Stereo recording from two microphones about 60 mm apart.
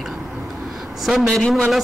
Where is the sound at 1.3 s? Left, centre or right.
Centre.